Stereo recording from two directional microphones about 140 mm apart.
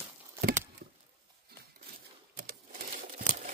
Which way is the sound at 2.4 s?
85° right.